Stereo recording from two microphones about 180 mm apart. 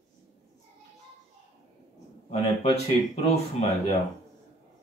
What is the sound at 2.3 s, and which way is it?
Speech, 35° left (ahead or behind).